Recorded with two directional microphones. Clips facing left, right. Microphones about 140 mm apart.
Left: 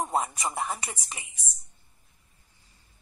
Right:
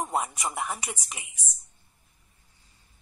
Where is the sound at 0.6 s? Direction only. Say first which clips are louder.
Even; 30° left (ahead or behind).